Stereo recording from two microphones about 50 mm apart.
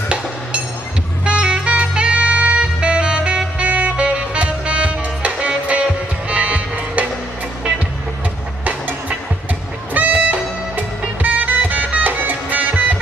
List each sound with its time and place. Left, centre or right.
1.2 s saxophone: right
2.6 s music: right
9.9 s music: right
11.2 s music: right